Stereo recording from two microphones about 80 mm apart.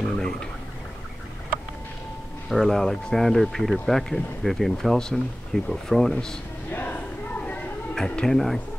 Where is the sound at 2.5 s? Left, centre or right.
Centre.